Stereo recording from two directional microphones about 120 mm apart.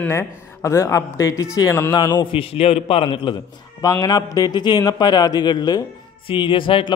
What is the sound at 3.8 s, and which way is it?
A man's voice, 30° left (ahead or behind).